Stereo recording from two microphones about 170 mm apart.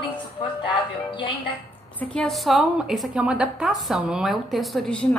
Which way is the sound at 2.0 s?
5° left (ahead or behind).